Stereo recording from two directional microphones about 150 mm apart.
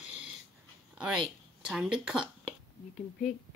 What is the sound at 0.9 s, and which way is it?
Speech, 5° right (ahead or behind).